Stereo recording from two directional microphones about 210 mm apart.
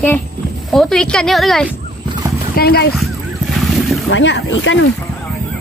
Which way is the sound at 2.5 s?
45° left (ahead or behind).